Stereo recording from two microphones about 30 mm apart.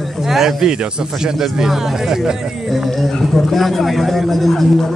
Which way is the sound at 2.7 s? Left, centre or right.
Centre.